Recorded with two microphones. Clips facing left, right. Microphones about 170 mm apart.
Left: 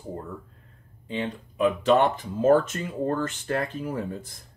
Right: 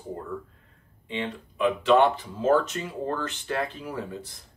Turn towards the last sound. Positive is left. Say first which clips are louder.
# left 4 dB
turn(degrees=45)  # may be behind; listen again after turning